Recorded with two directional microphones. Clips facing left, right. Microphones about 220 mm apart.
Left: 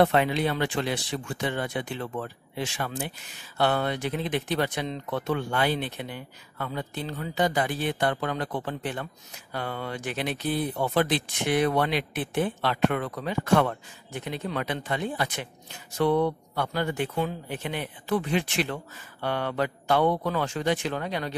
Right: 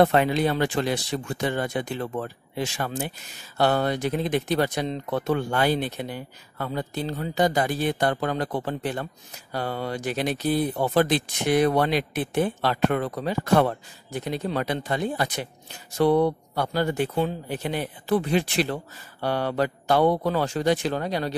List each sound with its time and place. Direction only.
0.0 s speech: 40° right (ahead or behind)